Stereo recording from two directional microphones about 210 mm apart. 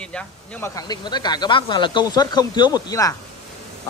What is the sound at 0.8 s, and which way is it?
A man's voice, 20° left (ahead or behind).